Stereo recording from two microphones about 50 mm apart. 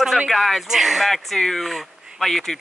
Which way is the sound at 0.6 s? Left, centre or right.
Centre.